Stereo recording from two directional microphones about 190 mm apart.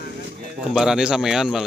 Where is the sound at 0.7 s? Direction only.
5° right (ahead or behind).